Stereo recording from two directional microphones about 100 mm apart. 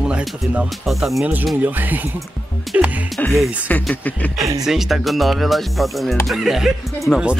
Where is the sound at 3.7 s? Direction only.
15° left (ahead or behind).